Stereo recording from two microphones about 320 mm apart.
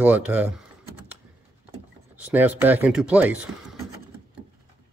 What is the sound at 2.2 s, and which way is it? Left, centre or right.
Speech, centre.